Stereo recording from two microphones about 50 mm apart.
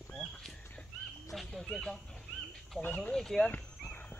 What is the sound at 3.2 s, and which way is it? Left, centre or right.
Speech, centre.